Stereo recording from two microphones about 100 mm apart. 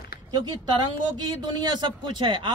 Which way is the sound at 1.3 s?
45° right (ahead or behind).